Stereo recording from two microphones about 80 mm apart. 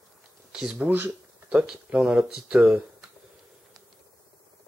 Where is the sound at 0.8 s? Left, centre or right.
Right.